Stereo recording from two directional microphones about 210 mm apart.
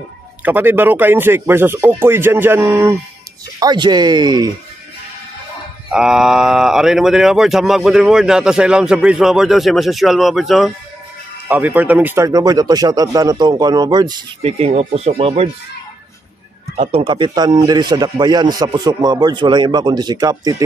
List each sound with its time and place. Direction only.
0.4 s speech: 10° right (ahead or behind)
5.9 s speech: centre (ahead or behind); by 15.5 s 30° right (ahead or behind)
16.7 s speech: 30° right (ahead or behind)